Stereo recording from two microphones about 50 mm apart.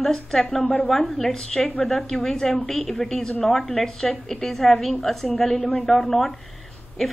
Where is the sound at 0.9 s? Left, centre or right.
Centre.